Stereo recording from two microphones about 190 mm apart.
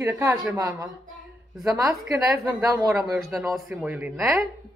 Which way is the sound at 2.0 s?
10° right (ahead or behind).